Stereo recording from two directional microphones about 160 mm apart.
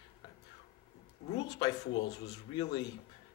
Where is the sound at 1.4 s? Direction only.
25° left (ahead or behind).